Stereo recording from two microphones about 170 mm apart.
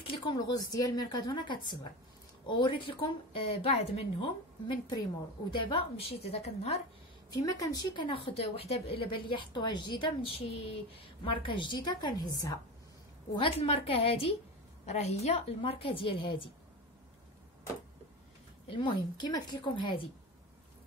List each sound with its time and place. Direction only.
0.0 s a woman's voice: 25° left (ahead or behind)
5.5 s a woman's voice: 30° left (ahead or behind)
7.3 s a woman's voice: 20° left (ahead or behind)
13.3 s a woman's voice: 35° left (ahead or behind)
18.7 s a woman's voice: 30° left (ahead or behind)